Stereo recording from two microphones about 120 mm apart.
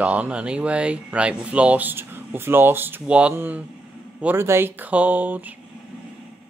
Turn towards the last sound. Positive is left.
turn(degrees=-15)  # may be behind; listen again after turning